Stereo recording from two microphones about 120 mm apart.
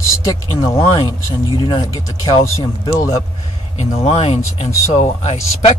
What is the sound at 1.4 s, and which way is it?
Speech, 35° left (ahead or behind).